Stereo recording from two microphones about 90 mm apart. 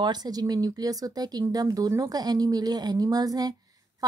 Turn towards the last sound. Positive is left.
turn(degrees=-45)  # may be behind; listen again after turning